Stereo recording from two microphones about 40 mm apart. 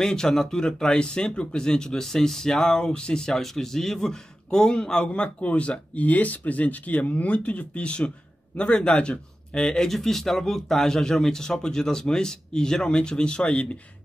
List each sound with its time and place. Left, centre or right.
0.0 s speech: centre
3.3 s speech: centre; by 5.3 s left
5.4 s speech: left
9.8 s speech: centre; by 13.7 s left